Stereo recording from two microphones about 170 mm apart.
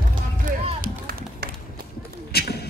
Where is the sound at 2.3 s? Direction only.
70° left (ahead or behind).